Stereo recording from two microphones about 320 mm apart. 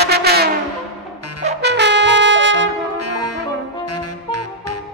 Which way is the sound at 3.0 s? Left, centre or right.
Left.